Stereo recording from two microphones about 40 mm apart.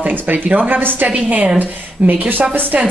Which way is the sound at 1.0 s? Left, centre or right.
Right.